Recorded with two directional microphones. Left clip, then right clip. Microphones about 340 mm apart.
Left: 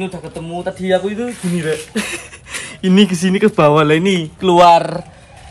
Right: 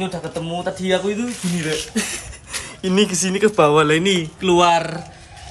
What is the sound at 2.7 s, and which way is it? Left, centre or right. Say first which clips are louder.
Speech: left 4 dB; left.